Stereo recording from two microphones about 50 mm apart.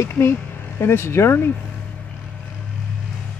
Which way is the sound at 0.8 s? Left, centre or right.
Left.